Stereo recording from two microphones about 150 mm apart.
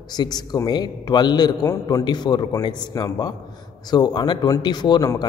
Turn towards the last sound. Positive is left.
turn(degrees=30)  # may be behind; listen again after turning